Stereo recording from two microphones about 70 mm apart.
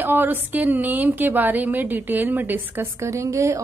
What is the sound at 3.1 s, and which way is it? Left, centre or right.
Speech, right.